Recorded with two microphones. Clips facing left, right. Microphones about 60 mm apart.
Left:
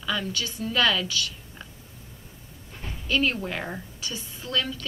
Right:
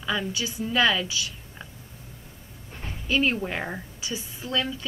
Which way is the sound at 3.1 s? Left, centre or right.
Centre.